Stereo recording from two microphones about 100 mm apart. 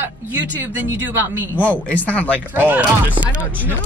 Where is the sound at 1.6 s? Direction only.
15° left (ahead or behind).